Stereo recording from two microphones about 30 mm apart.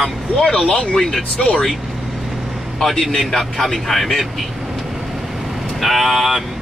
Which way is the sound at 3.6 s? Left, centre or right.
Centre.